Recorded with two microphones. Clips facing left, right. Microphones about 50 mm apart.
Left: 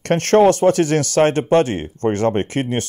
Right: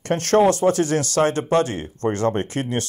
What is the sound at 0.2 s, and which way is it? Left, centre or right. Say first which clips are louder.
Speech: left 3 dB; left.